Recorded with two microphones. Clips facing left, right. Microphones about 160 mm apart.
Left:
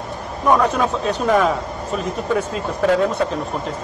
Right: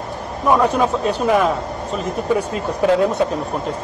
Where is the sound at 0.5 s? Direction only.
5° right (ahead or behind).